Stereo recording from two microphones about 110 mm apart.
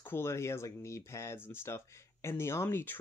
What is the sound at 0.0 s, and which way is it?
Speech, 20° left (ahead or behind).